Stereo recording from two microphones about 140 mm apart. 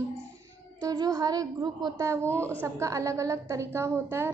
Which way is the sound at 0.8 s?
25° right (ahead or behind).